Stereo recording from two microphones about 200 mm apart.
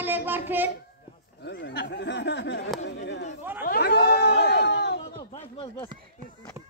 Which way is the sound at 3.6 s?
50° left (ahead or behind).